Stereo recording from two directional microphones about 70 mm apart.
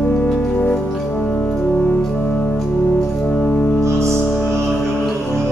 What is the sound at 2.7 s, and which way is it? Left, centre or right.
Music, left.